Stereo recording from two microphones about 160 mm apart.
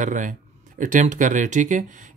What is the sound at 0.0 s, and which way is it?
Speech, 50° right (ahead or behind).